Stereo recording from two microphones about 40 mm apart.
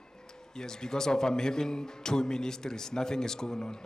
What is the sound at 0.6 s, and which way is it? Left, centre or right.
Speech, centre.